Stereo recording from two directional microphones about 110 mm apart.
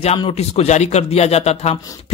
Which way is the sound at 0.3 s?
70° left (ahead or behind).